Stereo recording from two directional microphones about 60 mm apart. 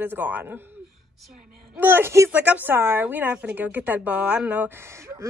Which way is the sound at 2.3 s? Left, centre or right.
Right.